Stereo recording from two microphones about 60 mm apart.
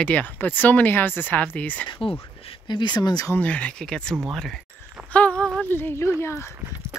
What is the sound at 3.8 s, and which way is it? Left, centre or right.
Speech, centre.